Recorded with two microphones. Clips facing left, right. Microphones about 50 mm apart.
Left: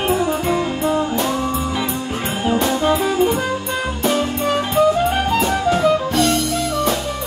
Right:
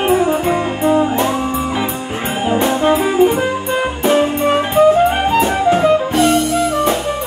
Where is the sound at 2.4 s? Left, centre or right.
Right.